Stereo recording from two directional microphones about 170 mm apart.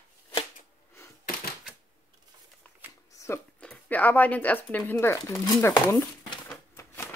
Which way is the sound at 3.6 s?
5° left (ahead or behind).